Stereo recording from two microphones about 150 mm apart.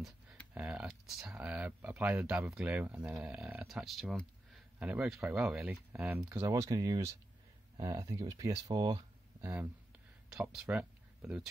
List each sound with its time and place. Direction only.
0.6 s speech: 5° right (ahead or behind)
6.4 s speech: 25° right (ahead or behind)
9.4 s speech: 10° right (ahead or behind)